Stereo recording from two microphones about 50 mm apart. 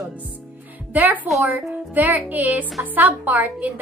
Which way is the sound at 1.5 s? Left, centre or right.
Right.